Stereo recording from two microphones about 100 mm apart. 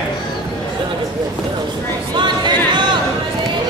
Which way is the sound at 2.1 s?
50° right (ahead or behind).